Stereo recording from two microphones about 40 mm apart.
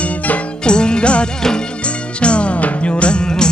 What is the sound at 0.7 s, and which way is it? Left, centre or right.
Music, left.